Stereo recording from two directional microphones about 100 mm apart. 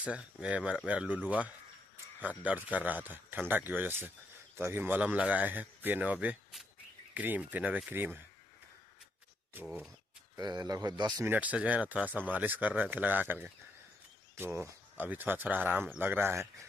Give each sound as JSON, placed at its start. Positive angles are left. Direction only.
{"t": 0.0, "sound": "speech", "side_deg": -10}
{"t": 10.4, "sound": "speech", "side_deg": -40}
{"t": 11.2, "sound": "speech", "side_deg": -15}